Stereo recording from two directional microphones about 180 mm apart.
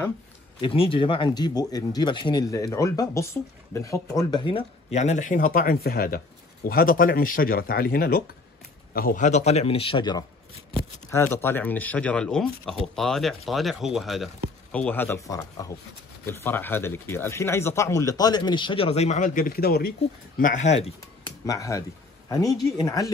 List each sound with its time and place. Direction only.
0.6 s speech: 30° left (ahead or behind)
11.1 s speech: 15° left (ahead or behind); by 19.9 s 60° left (ahead or behind)
20.3 s speech: 45° left (ahead or behind)
21.5 s speech: 20° left (ahead or behind)